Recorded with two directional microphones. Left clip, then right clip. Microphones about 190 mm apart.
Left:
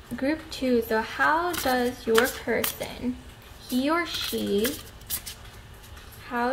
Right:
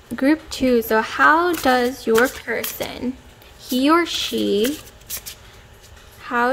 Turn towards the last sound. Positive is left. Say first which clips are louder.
# right 8 dB
turn(degrees=-35)  # may be behind; listen again after turning